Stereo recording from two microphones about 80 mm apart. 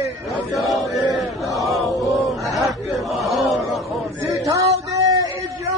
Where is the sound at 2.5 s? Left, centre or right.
Centre.